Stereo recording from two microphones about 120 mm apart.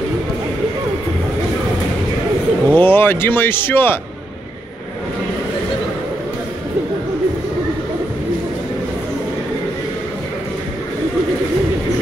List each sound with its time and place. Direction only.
2.7 s speech: 20° left (ahead or behind)